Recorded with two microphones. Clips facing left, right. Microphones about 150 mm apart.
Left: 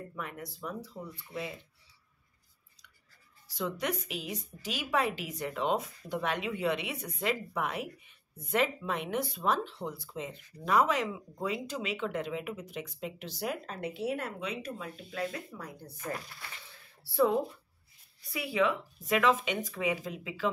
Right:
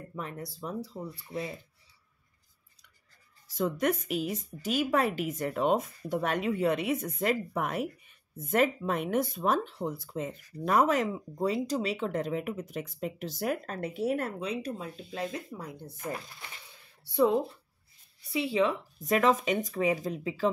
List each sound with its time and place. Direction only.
0.1 s speech: 35° right (ahead or behind)
3.4 s speech: 50° right (ahead or behind); by 17.3 s 20° right (ahead or behind)
18.3 s speech: 25° right (ahead or behind)